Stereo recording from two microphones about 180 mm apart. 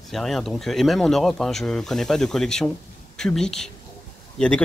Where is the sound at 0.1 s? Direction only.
Centre (ahead or behind).